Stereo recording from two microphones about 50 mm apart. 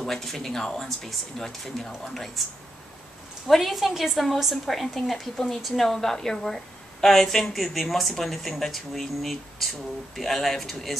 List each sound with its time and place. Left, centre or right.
0.0 s a woman's voice: centre
3.4 s a woman's voice: centre